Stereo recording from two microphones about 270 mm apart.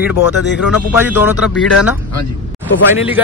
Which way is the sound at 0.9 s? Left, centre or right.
Centre.